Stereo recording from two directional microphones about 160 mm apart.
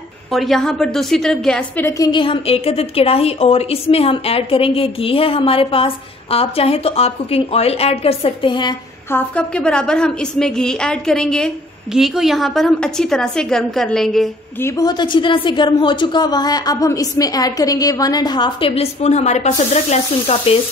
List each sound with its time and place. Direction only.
0.3 s a woman's voice: centre (ahead or behind)
1.9 s a woman's voice: 25° left (ahead or behind)
9.1 s a woman's voice: 5° left (ahead or behind)
14.6 s a woman's voice: 25° left (ahead or behind); by 20.5 s 40° left (ahead or behind)